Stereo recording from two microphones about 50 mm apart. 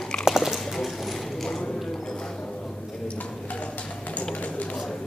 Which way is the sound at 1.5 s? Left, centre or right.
Centre.